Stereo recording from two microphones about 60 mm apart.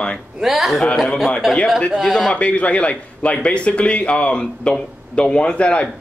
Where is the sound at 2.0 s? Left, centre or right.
Centre.